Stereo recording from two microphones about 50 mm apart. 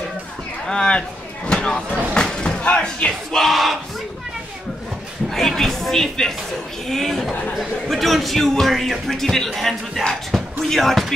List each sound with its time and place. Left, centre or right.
0.7 s speech: centre
5.3 s speech: centre